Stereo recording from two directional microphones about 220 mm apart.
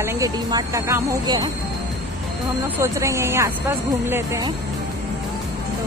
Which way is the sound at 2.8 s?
15° right (ahead or behind).